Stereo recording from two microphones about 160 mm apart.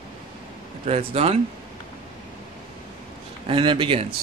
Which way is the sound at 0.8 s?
40° right (ahead or behind).